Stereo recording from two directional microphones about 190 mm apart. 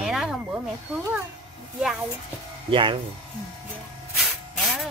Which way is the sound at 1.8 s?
5° right (ahead or behind).